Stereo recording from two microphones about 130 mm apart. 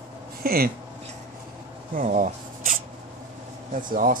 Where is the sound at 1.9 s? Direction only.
85° right.